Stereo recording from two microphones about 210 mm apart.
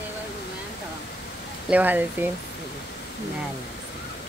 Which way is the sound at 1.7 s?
10° right (ahead or behind).